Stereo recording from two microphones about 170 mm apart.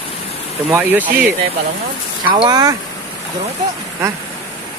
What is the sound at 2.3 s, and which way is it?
Speech, 25° right (ahead or behind).